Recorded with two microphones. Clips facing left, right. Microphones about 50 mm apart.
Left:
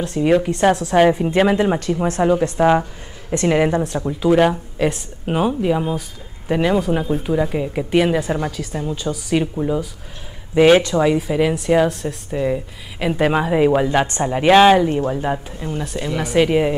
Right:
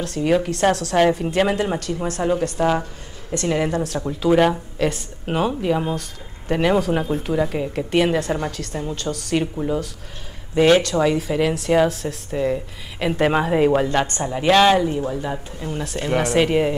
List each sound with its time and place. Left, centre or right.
0.0 s a woman's voice: centre
4.0 s speech: centre
6.6 s a woman's voice: centre
10.5 s speech: centre
14.0 s a woman's voice: left
14.9 s a woman's voice: left
15.7 s speech: centre